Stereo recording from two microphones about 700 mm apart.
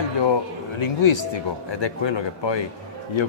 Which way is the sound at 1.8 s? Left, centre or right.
Left.